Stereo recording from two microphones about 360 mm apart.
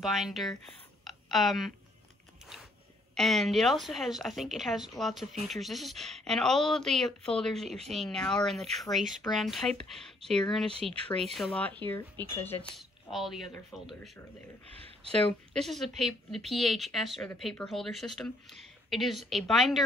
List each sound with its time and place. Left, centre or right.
0.0 s speech: centre
3.2 s speech: centre
15.5 s speech: centre